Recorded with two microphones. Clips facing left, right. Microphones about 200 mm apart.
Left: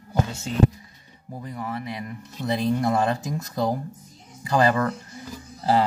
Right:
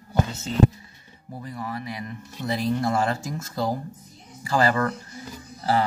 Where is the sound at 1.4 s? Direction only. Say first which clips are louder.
Left 1 dB; 20° left (ahead or behind).